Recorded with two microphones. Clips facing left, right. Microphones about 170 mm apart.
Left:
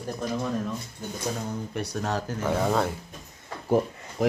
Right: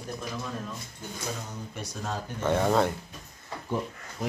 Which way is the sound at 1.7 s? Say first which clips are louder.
Left 5 dB; 65° left (ahead or behind).